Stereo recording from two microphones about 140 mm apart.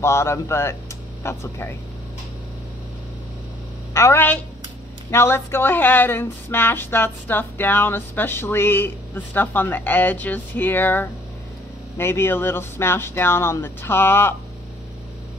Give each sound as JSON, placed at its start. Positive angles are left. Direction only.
{"t": 0.0, "sound": "speech", "side_deg": 20}
{"t": 3.9, "sound": "speech", "side_deg": 20}